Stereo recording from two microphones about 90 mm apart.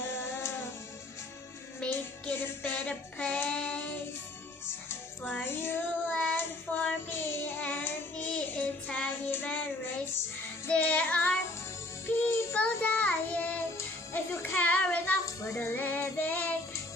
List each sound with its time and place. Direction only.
0.1 s music: 30° left (ahead or behind)
1.8 s music: 20° left (ahead or behind)
5.3 s child singing: 25° left (ahead or behind)
10.7 s child singing: 20° left (ahead or behind)
12.3 s child singing: 30° left (ahead or behind)
12.5 s child singing: 15° left (ahead or behind)
13.7 s music: 25° left (ahead or behind)
15.2 s child singing: 35° left (ahead or behind)